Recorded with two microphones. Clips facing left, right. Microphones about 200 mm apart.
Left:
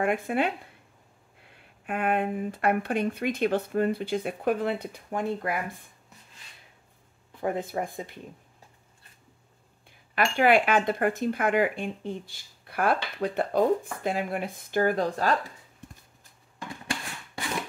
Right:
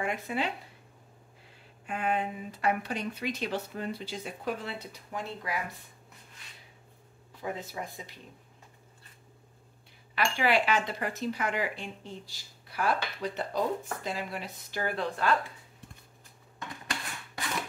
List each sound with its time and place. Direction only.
0.0 s speech: 55° left (ahead or behind)
1.5 s speech: 60° left (ahead or behind)
7.3 s speech: 55° left (ahead or behind)
10.1 s speech: 50° left (ahead or behind)